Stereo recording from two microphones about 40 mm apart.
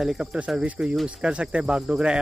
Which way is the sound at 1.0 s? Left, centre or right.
Right.